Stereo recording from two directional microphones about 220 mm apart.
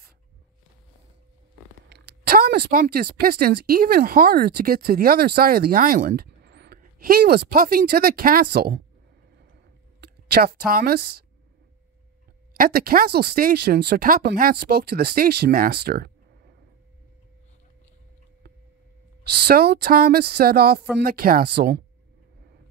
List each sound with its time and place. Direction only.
1.9 s speech: 45° right (ahead or behind)
9.5 s a sound: 50° right (ahead or behind)
12.5 s speech: 40° right (ahead or behind)
19.2 s speech: 45° right (ahead or behind)